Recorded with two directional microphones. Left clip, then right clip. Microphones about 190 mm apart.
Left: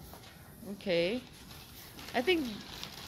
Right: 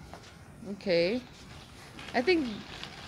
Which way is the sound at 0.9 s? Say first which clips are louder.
Right 4 dB; 10° right (ahead or behind).